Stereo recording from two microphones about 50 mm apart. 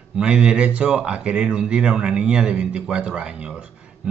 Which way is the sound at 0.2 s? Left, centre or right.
Centre.